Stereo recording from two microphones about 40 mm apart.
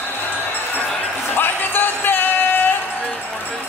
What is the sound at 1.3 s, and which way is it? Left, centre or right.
Music, left.